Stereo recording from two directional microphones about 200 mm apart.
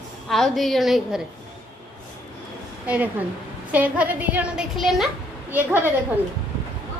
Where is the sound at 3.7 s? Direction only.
10° right (ahead or behind).